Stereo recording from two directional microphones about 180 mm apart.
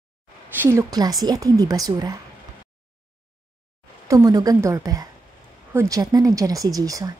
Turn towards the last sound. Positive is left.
turn(degrees=-20)  # may be behind; listen again after turning